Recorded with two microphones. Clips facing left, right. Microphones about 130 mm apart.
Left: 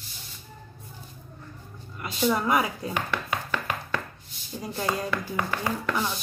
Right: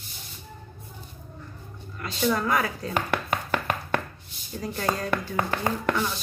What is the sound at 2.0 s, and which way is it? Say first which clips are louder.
Speech: even; 15° left (ahead or behind).